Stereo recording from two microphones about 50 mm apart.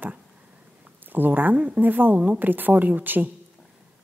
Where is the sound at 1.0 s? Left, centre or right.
Right.